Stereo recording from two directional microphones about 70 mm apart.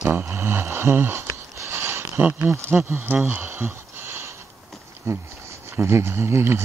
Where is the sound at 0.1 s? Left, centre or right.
Right.